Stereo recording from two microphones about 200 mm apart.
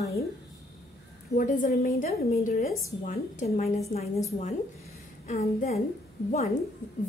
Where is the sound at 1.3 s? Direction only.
45° left (ahead or behind).